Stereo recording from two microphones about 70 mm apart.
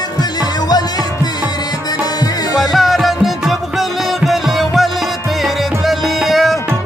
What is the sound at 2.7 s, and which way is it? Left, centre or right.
Music, centre.